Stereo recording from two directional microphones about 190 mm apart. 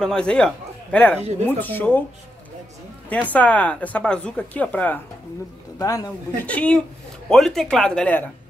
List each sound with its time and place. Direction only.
0.0 s speech: 5° left (ahead or behind)
3.1 s speech: 10° left (ahead or behind)
6.4 s speech: 5° left (ahead or behind)